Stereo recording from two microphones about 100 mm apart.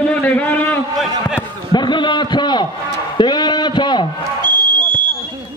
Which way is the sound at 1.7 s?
50° left (ahead or behind).